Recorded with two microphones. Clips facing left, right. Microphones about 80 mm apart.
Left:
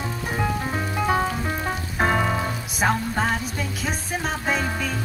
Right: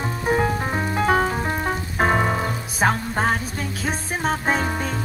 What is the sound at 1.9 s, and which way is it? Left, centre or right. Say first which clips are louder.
Music: right 2 dB; right.